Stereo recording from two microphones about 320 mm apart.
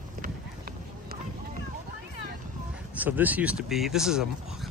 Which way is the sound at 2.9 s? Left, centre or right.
Centre.